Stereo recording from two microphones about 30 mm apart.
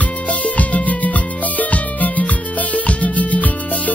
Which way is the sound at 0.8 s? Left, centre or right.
Left.